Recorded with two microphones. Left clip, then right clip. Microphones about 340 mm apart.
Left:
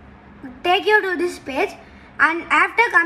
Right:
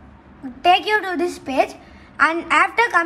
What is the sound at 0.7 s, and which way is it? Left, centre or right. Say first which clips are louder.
A woman's voice: even; right.